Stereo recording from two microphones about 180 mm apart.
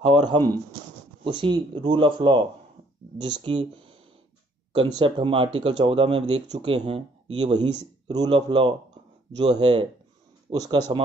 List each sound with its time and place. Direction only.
0.0 s speech: 25° right (ahead or behind)